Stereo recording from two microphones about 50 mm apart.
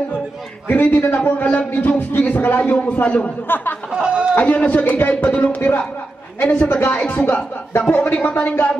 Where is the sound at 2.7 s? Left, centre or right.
Left.